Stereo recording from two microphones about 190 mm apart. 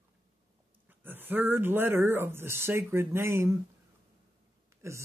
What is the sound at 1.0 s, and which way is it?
Speech, 10° right (ahead or behind).